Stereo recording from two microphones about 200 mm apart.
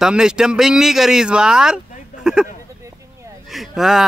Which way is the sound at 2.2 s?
5° right (ahead or behind).